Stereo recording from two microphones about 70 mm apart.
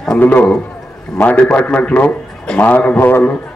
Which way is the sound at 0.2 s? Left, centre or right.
Left.